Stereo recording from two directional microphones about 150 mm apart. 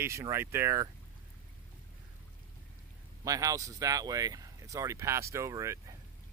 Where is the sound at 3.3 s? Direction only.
25° right (ahead or behind).